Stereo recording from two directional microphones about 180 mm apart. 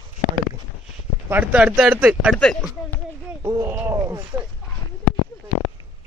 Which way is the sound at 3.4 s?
15° right (ahead or behind).